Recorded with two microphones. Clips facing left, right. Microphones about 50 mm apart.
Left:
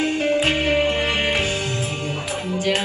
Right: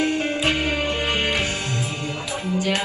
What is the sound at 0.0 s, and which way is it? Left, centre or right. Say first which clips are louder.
Music: left 2 dB; left.